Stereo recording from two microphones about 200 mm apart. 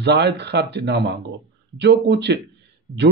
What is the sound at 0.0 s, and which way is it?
A man's voice, 55° right (ahead or behind).